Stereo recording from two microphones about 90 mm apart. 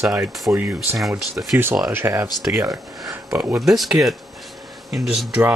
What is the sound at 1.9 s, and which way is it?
Speech, 25° right (ahead or behind).